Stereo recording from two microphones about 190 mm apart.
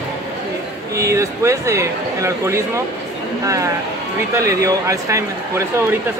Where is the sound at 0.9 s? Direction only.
15° right (ahead or behind).